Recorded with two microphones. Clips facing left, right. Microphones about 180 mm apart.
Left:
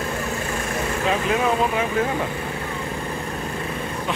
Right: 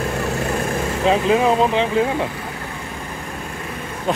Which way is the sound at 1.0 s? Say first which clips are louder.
Right 6 dB; 25° right (ahead or behind).